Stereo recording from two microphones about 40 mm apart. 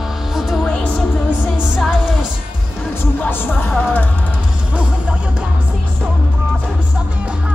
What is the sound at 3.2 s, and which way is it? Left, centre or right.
Music, left.